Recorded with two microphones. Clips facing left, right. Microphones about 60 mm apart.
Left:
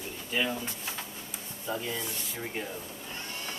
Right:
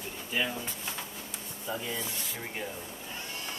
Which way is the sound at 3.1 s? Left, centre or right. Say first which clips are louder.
Left 1 dB; centre.